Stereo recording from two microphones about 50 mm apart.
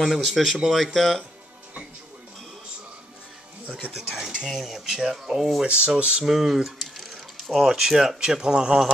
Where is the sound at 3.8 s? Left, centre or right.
Right.